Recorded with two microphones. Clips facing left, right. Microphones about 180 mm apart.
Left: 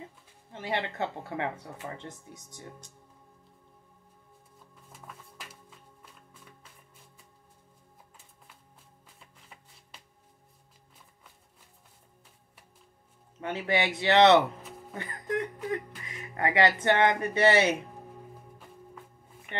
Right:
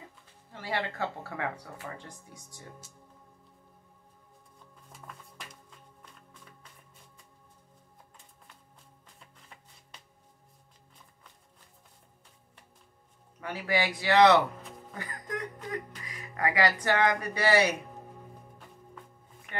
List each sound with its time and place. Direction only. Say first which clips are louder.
0.5 s speech: left 1 dB; 20° left (ahead or behind)
5.0 s music: even; 5° left (ahead or behind)
9.0 s music: even; 5° left (ahead or behind)
13.4 s speech: left 1 dB; 25° left (ahead or behind)
15.0 s music: left 6 dB; 25° left (ahead or behind)
16.1 s speech: left 1 dB; 25° left (ahead or behind)